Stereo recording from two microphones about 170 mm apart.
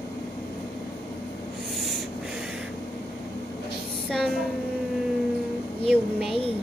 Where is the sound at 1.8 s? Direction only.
Centre (ahead or behind).